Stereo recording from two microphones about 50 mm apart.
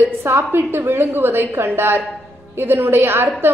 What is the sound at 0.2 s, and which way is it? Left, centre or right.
A woman's voice, right.